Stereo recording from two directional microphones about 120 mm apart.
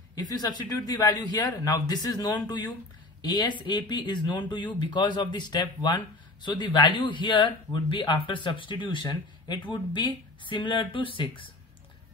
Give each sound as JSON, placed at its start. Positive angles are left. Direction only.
{"t": 0.1, "sound": "speech", "side_deg": 35}